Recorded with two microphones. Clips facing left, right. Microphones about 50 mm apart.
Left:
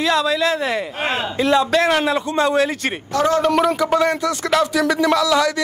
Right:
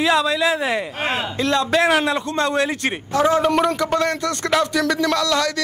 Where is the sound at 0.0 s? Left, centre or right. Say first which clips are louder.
Even; centre.